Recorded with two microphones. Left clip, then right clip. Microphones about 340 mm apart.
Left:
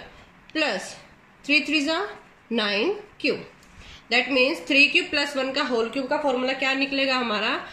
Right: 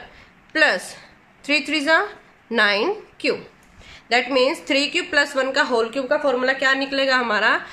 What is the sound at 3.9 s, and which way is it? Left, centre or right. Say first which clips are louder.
A woman's voice: right 3 dB; right.